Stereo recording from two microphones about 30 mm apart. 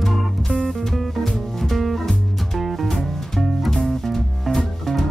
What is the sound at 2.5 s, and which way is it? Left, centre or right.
Music, centre.